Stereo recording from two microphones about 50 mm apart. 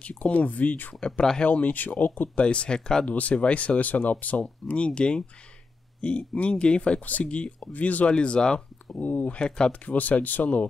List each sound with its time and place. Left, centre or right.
0.0 s speech: left
2.2 s speech: left
3.1 s speech: left
9.0 s speech: left
9.4 s speech: centre
9.8 s speech: left